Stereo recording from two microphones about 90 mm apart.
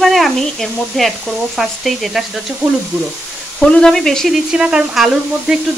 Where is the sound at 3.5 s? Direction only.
5° left (ahead or behind).